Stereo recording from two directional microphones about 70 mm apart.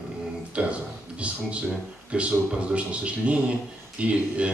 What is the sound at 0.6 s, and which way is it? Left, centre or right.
A man's voice, centre.